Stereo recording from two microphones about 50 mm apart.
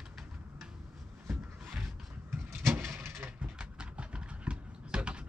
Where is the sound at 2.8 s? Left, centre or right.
Right.